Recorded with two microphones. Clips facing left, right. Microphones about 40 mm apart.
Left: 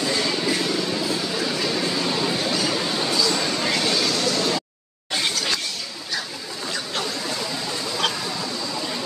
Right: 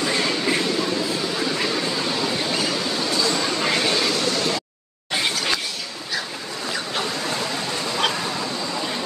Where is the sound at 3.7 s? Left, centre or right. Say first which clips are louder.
Right 1 dB; right.